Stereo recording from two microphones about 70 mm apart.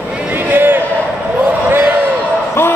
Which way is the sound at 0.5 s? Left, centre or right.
Right.